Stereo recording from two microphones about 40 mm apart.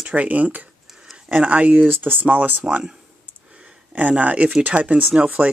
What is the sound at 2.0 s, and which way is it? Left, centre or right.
Speech, right.